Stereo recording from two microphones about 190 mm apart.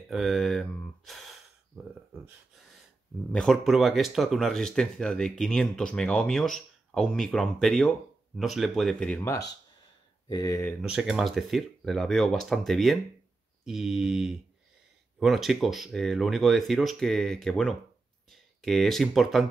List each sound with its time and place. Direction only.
0.1 s speech: centre (ahead or behind)
3.3 s speech: 5° left (ahead or behind)
10.2 s speech: 20° left (ahead or behind)
10.8 s speech: centre (ahead or behind)